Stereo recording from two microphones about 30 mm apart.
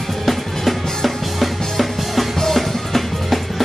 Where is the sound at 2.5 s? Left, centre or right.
Centre.